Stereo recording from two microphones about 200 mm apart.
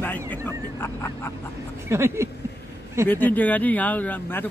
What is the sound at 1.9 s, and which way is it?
Speech, 15° right (ahead or behind).